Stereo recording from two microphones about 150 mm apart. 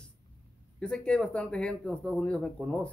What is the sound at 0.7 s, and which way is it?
Speech, 5° left (ahead or behind).